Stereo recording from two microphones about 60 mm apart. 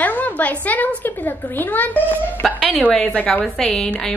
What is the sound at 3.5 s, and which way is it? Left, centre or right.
Speech, centre.